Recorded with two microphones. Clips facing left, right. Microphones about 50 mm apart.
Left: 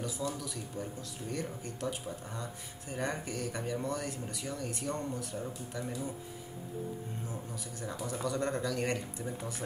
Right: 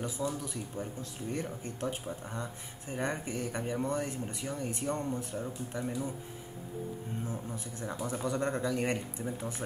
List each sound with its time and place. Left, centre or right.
0.2 s speech: right
7.8 s speech: centre